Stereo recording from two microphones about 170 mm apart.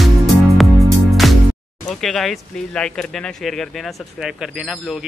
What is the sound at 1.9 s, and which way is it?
Speech, centre (ahead or behind).